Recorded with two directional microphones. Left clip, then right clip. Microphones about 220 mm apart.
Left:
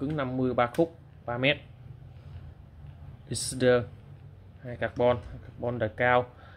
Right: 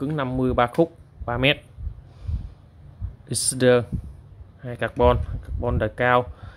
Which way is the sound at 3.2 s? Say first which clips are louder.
Right 6 dB; 25° right (ahead or behind).